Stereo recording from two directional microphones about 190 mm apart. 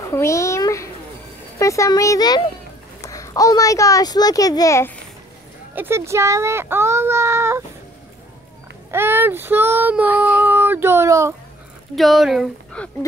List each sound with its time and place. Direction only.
0.1 s a child's voice: 15° left (ahead or behind)
5.8 s speech: 15° right (ahead or behind)
8.9 s child singing: 10° right (ahead or behind)
11.9 s speech: centre (ahead or behind)